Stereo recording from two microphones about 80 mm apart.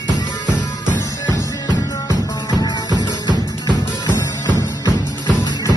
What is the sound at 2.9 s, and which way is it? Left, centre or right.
Music, right.